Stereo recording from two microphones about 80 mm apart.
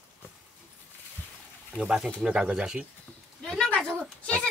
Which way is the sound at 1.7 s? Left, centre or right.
Centre.